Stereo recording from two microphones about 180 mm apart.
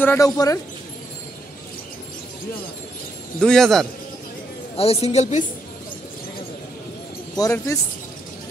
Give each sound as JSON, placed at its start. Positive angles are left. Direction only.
{"t": 0.0, "sound": "speech", "side_deg": 15}
{"t": 3.3, "sound": "a man's voice", "side_deg": 5}
{"t": 4.7, "sound": "a man's voice", "side_deg": 35}
{"t": 7.3, "sound": "speech", "side_deg": 15}